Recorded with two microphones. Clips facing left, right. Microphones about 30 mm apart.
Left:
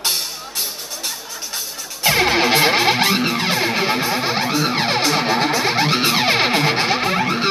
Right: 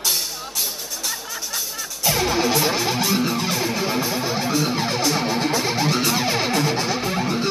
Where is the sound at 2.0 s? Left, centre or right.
Left.